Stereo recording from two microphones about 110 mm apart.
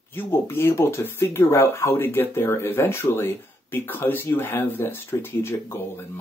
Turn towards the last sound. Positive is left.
turn(degrees=25)  # may be behind; listen again after turning